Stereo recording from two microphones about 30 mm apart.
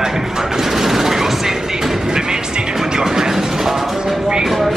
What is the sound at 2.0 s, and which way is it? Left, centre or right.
Speech, right.